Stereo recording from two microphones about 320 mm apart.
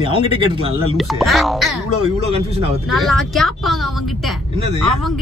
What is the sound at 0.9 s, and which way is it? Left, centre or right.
Whip, centre.